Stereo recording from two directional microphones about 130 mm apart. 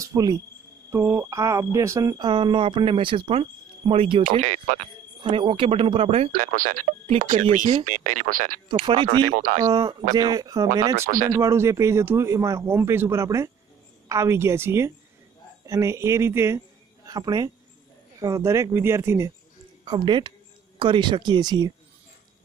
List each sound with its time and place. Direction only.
0.0 s cricket: 30° right (ahead or behind)
0.8 s speech: 20° right (ahead or behind); by 4.2 s 45° right (ahead or behind)
4.4 s speech: 65° right (ahead or behind)
5.2 s speech: 40° right (ahead or behind)
6.3 s speech: 90° right
7.1 s speech: 65° right (ahead or behind)
7.8 s speech: 80° right
8.8 s speech: 40° right (ahead or behind)
9.3 s speech: 90° right
9.7 s speech: 30° right (ahead or behind)
11.1 s speech: 90° right
11.3 s a man's voice: 20° right (ahead or behind)
19.8 s speech: 35° right (ahead or behind)